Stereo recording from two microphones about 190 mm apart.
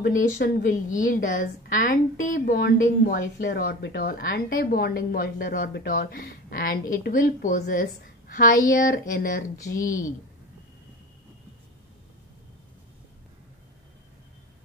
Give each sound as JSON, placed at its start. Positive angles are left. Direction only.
{"t": 0.0, "sound": "a woman's voice", "side_deg": 55}